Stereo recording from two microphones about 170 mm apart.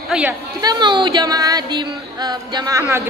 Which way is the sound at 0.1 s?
5° right (ahead or behind).